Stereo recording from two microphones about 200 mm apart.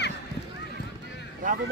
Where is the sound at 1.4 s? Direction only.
40° right (ahead or behind).